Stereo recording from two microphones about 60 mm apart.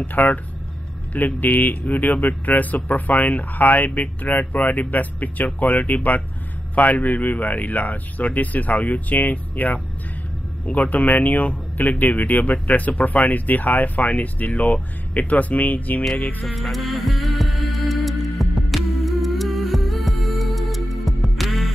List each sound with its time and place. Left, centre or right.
0.0 s speech: left
16.4 s music: centre